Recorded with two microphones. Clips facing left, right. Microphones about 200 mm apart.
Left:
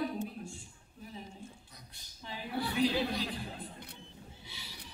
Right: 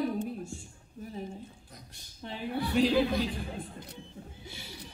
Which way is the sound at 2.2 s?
55° right (ahead or behind).